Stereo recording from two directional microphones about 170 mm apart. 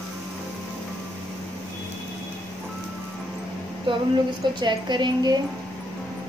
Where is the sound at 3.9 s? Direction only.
30° right (ahead or behind).